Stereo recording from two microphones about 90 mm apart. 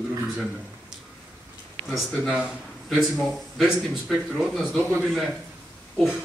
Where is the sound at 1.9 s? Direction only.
5° right (ahead or behind).